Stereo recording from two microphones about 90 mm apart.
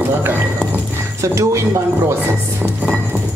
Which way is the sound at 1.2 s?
35° right (ahead or behind).